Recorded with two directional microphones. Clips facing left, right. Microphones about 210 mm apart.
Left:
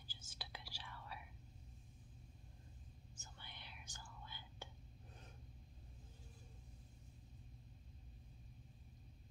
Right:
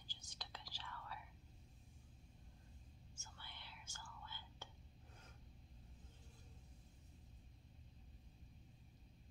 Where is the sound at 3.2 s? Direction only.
15° left (ahead or behind).